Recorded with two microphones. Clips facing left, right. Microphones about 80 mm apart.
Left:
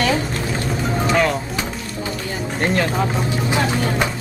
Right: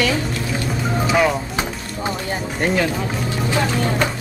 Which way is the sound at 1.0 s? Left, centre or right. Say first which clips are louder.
Right 1 dB; centre.